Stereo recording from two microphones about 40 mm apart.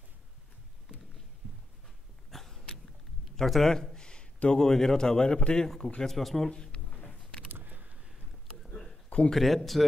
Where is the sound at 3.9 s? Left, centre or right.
Left.